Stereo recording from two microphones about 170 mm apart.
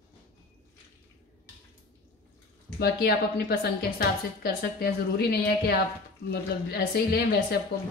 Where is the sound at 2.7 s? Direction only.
70° left (ahead or behind).